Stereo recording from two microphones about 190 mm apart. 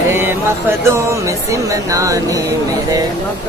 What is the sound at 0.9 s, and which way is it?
Music, 15° right (ahead or behind).